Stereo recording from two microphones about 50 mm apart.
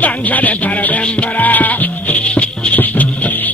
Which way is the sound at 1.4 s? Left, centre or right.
Left.